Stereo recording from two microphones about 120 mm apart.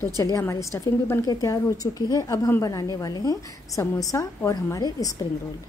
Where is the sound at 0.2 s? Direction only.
25° left (ahead or behind).